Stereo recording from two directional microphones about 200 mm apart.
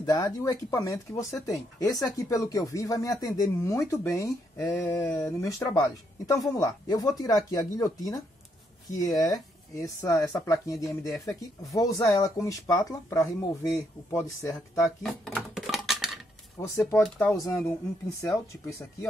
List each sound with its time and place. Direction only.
0.0 s speech: 15° left (ahead or behind)
9.0 s speech: 15° left (ahead or behind)
15.2 s typing: centre (ahead or behind)
16.6 s speech: 15° left (ahead or behind)